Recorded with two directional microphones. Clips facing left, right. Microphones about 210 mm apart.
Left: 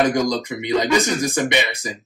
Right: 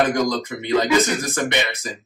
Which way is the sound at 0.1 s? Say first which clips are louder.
Left 1 dB; 15° left (ahead or behind).